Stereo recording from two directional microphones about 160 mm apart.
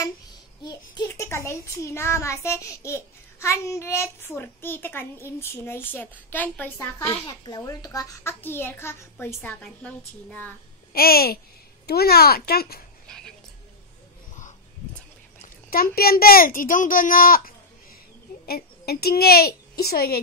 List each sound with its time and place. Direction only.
0.7 s a child's voice: 20° left (ahead or behind)
7.2 s a child's voice: 25° left (ahead or behind); by 10.5 s 10° left (ahead or behind)
10.9 s a child's voice: 70° left (ahead or behind)
15.4 s a child's voice: 65° left (ahead or behind)
18.5 s a woman's voice: 75° left (ahead or behind)